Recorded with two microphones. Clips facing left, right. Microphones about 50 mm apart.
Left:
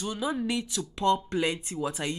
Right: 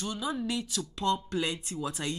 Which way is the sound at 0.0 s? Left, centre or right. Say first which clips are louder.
Left 3 dB; centre.